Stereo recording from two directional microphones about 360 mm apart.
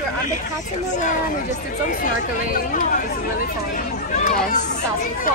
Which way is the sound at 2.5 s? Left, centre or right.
Left.